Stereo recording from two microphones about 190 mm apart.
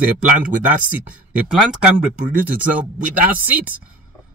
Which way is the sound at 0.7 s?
5° right (ahead or behind).